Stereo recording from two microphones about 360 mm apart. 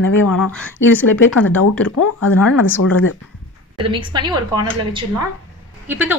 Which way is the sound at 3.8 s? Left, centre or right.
Centre.